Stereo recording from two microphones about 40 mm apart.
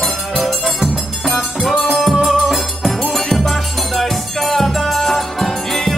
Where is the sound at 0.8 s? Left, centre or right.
Centre.